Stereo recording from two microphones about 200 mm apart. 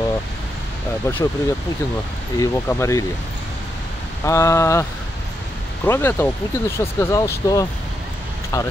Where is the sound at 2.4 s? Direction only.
15° left (ahead or behind).